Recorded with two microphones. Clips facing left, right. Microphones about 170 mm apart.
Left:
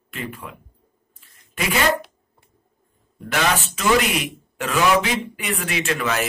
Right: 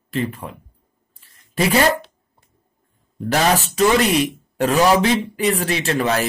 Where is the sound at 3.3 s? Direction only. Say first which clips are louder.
Right 4 dB; 35° right (ahead or behind).